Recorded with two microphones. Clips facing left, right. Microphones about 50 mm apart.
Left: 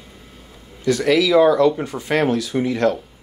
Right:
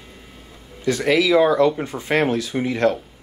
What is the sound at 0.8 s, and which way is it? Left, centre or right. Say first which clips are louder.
Speech: left 2 dB; right.